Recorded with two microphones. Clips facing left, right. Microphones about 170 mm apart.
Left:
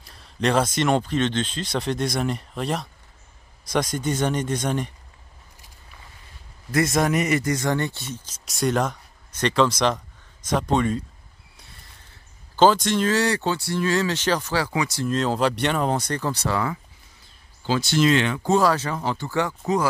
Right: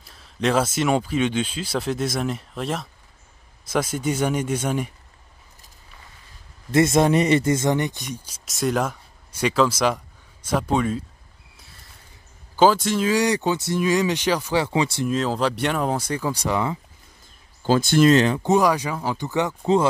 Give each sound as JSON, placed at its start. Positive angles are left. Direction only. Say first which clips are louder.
{"t": 0.0, "sound": "speech", "louder": "even", "side_deg": 0}
{"t": 6.7, "sound": "speech", "louder": "right 4 dB", "side_deg": -25}
{"t": 8.5, "sound": "speech", "louder": "even", "side_deg": 0}
{"t": 12.5, "sound": "speech", "louder": "even", "side_deg": -5}
{"t": 14.6, "sound": "speech", "louder": "right 3 dB", "side_deg": -25}
{"t": 15.0, "sound": "speech", "louder": "even", "side_deg": -5}
{"t": 17.6, "sound": "speech", "louder": "right 4 dB", "side_deg": -50}
{"t": 18.4, "sound": "speech", "louder": "right 1 dB", "side_deg": -15}